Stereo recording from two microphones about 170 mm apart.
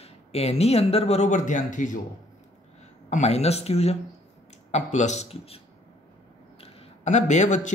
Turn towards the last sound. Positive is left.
turn(degrees=45)  # may be behind; listen again after turning